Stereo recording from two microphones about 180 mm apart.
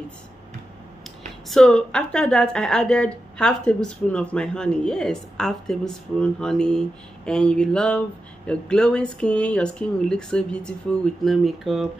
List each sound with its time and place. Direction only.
1.5 s speech: 5° left (ahead or behind)